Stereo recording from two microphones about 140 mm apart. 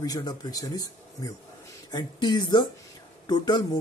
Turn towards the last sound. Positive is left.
turn(degrees=30)  # may be behind; listen again after turning